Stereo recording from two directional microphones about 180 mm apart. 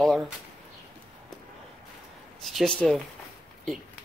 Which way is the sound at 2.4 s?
Centre (ahead or behind).